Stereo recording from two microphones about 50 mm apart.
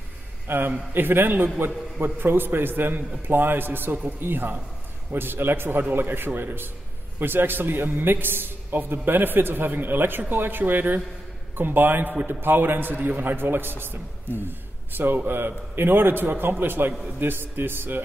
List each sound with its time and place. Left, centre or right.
0.5 s a man's voice: right
12.9 s a man's voice: right